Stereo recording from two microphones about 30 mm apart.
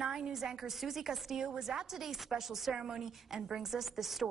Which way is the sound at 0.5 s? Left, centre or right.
Centre.